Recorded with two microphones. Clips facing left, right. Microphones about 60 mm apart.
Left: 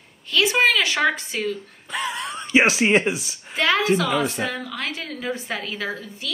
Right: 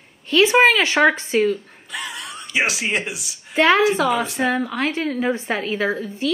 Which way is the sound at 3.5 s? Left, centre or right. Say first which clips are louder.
Right 4 dB; right.